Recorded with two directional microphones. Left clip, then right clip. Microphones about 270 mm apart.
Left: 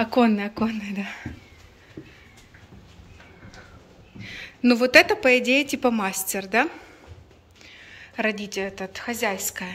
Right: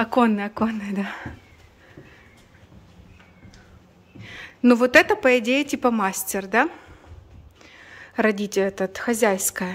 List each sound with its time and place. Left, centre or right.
0.0 s a woman's voice: centre
4.2 s a woman's voice: centre; by 9.7 s right